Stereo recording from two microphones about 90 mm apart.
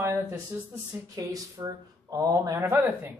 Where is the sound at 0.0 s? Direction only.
30° right (ahead or behind).